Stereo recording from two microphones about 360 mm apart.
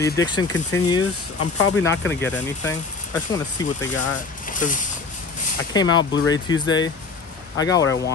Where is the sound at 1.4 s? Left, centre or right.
Left.